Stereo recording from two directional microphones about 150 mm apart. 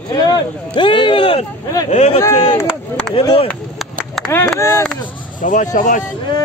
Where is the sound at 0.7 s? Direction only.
35° left (ahead or behind).